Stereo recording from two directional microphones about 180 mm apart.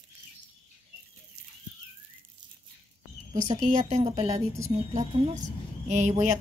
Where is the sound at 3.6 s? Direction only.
40° right (ahead or behind).